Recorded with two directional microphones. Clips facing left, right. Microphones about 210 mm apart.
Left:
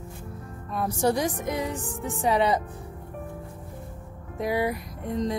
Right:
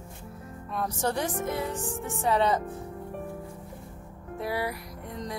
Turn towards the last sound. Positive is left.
turn(degrees=20)  # may be behind; listen again after turning